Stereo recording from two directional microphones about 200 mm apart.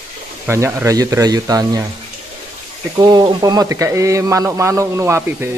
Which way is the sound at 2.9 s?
20° right (ahead or behind).